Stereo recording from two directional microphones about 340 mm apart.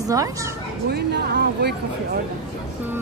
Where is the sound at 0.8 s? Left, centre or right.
Right.